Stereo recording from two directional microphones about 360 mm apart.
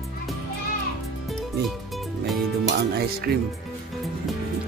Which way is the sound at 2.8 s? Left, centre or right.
Right.